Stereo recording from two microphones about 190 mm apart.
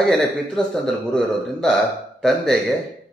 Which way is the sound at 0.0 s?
5° left (ahead or behind).